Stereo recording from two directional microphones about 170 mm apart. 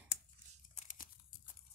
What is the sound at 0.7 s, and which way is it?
Crumpling, 50° left (ahead or behind).